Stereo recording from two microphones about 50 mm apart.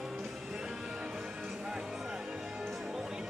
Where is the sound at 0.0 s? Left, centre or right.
Centre.